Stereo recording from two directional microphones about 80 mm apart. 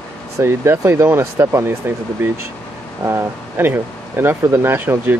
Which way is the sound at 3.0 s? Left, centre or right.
Right.